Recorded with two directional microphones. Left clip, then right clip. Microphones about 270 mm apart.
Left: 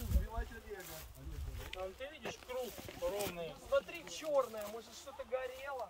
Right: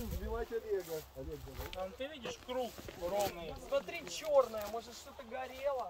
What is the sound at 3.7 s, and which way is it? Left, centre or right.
Speech, right.